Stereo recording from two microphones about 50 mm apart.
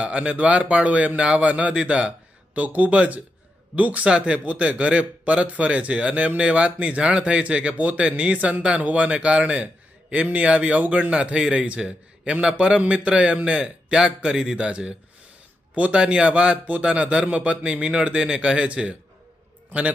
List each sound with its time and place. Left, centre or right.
0.0 s a man's voice: right